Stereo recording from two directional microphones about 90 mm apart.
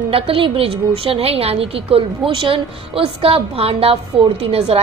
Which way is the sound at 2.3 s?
75° right (ahead or behind).